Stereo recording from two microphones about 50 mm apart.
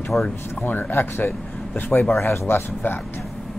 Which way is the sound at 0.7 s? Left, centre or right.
Left.